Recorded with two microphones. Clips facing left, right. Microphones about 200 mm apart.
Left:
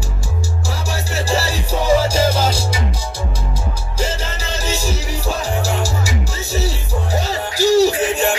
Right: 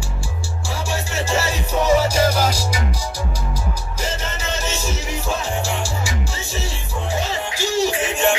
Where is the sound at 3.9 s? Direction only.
30° left (ahead or behind).